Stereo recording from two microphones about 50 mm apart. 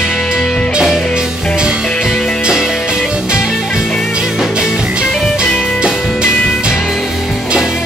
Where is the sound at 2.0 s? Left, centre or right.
Centre.